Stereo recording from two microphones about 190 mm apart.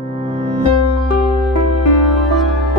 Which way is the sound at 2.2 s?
Centre (ahead or behind).